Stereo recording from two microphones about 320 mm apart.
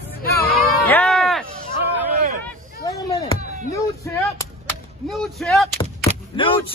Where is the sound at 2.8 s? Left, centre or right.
Centre.